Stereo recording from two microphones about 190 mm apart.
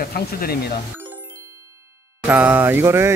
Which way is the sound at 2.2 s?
10° right (ahead or behind).